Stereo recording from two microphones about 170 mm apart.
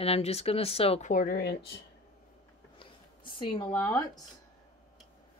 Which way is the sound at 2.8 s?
30° left (ahead or behind).